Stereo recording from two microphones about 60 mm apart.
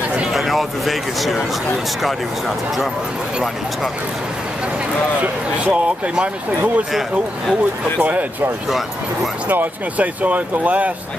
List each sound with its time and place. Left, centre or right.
0.3 s speech: centre
5.2 s speech: right
6.9 s speech: centre
8.0 s speech: right
8.6 s speech: centre
9.5 s speech: right